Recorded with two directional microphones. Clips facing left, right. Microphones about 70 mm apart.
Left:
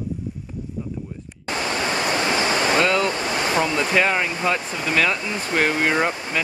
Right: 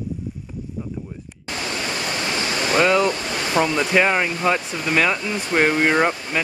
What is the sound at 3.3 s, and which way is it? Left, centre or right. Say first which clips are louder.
Waves: left 1 dB; left.